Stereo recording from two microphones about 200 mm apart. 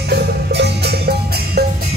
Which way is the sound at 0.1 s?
55° right (ahead or behind).